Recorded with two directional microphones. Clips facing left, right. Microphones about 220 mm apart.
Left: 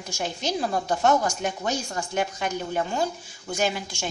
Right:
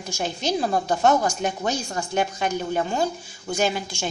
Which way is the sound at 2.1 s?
30° right (ahead or behind).